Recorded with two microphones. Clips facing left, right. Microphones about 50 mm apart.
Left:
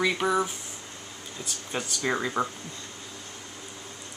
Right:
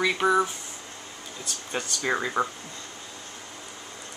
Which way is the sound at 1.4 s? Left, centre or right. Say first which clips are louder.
Right 1 dB; centre.